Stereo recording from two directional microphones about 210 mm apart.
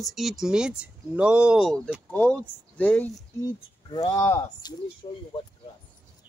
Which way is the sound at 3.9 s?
20° left (ahead or behind).